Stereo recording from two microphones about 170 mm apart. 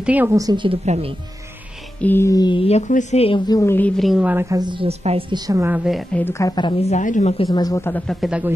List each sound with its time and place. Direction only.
0.0 s a woman's voice: 10° right (ahead or behind); by 0.7 s 25° right (ahead or behind)
0.8 s speech: 40° right (ahead or behind)
2.0 s speech: 10° left (ahead or behind); by 5.2 s 35° right (ahead or behind)
5.3 s a woman's voice: 20° right (ahead or behind)
5.9 s a woman's voice: centre (ahead or behind)
6.2 s speech: 15° left (ahead or behind)
6.8 s a woman's voice: 45° left (ahead or behind)
7.5 s speech: 20° left (ahead or behind)
8.1 s a woman's voice: 5° right (ahead or behind)